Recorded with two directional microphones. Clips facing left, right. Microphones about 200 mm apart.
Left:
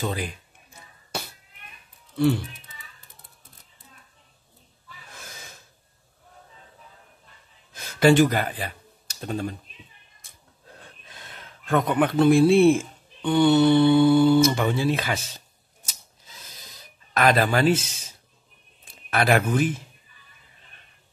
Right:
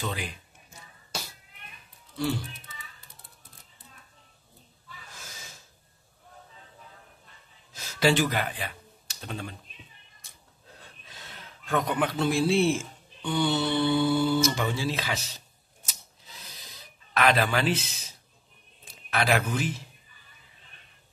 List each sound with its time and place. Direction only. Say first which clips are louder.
0.0 s speech: left 5 dB; 40° left (ahead or behind)
1.1 s a sound: left 5 dB; 60° left (ahead or behind)
2.1 s speech: left 8 dB; 55° left (ahead or behind)
5.1 s gasp: left 6 dB; 55° left (ahead or behind)
7.7 s computer keyboard: left 7 dB; 55° left (ahead or behind)
11.1 s speech: even; 55° left (ahead or behind)
17.1 s speech: left 4 dB; 40° left (ahead or behind)